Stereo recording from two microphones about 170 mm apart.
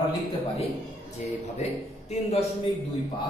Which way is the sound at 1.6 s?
40° left (ahead or behind).